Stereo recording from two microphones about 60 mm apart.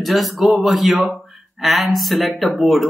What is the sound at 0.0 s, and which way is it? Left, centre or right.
Speech, centre.